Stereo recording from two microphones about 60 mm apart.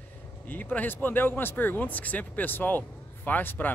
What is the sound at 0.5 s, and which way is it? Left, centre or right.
Speech, left.